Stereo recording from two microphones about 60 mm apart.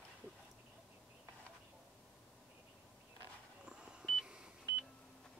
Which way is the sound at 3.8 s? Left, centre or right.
Centre.